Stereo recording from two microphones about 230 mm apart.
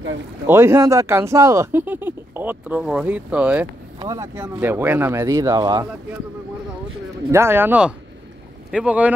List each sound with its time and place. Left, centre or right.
0.5 s speech: centre
7.2 s speech: centre